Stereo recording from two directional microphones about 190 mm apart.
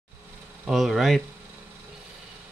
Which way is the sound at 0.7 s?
Centre (ahead or behind).